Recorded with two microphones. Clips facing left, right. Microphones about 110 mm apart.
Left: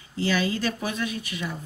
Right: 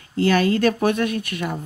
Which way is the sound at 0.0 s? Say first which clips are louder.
Right 7 dB; 55° right (ahead or behind).